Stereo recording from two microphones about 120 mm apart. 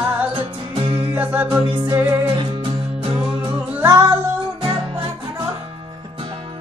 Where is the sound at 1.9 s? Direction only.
20° right (ahead or behind).